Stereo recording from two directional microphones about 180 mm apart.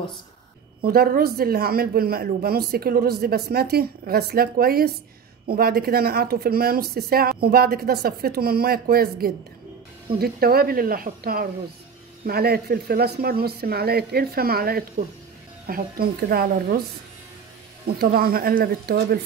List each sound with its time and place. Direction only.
0.8 s speech: 55° right (ahead or behind)
18.0 s speech: 55° right (ahead or behind)